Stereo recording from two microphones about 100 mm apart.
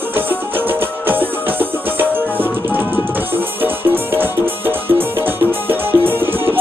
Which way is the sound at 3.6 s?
20° right (ahead or behind).